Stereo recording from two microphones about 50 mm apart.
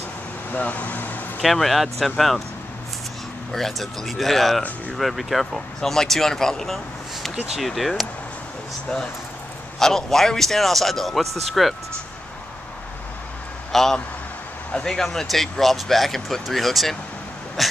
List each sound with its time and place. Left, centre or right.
0.5 s speech: left
1.4 s speech: centre
3.5 s speech: centre
9.8 s speech: centre
13.7 s vehicle: centre
14.9 s speech: centre